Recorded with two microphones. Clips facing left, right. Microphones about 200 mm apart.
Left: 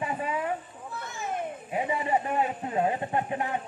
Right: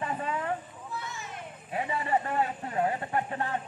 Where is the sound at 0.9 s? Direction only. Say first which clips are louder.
Left 6 dB; 50° left (ahead or behind).